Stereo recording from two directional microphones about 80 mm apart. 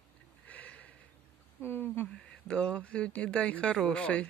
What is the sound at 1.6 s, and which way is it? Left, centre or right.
Speech, left.